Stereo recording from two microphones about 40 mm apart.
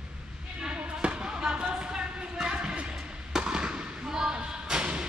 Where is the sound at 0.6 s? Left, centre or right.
Right.